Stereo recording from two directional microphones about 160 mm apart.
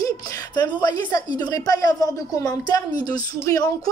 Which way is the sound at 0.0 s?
20° left (ahead or behind).